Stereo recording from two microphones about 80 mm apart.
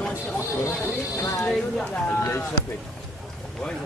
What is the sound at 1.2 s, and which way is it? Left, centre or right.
Speech, left.